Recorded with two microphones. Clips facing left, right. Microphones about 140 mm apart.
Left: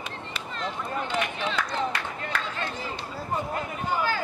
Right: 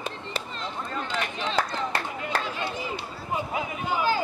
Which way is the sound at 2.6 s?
15° right (ahead or behind).